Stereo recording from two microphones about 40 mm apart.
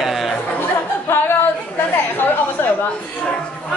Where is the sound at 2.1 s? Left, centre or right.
Left.